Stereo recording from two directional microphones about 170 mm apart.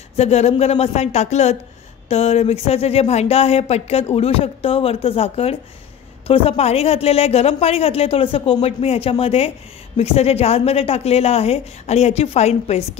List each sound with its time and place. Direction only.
0.1 s speech: 40° left (ahead or behind)